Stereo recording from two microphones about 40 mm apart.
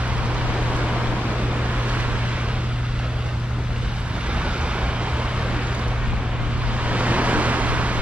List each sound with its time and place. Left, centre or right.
6.9 s vehicle: right